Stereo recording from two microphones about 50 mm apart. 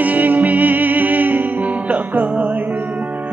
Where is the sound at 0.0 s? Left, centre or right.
Right.